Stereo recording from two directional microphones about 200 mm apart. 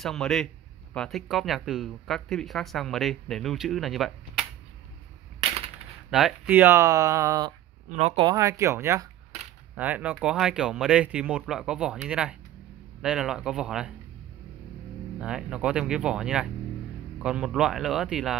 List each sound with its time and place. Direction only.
0.0 s speech: centre (ahead or behind)
6.0 s speech: centre (ahead or behind)
7.9 s speech: 35° right (ahead or behind)
8.3 s speech: 15° right (ahead or behind)
15.1 s speech: 5° right (ahead or behind)